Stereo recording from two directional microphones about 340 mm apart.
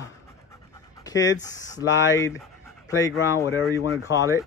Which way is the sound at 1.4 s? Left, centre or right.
Centre.